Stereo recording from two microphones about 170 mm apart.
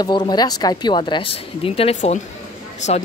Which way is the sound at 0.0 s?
25° left (ahead or behind).